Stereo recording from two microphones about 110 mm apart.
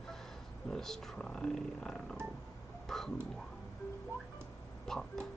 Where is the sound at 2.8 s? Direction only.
5° left (ahead or behind).